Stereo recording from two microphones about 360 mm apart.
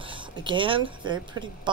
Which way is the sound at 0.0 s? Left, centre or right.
Centre.